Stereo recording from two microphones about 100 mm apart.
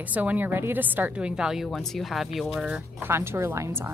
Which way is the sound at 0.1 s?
15° right (ahead or behind).